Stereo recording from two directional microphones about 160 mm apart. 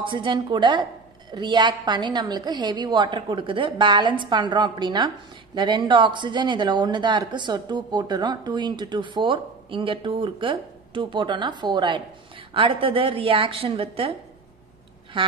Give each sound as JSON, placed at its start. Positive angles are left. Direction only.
{"t": 0.0, "sound": "a woman's voice", "side_deg": -30}
{"t": 15.2, "sound": "a woman's voice", "side_deg": -30}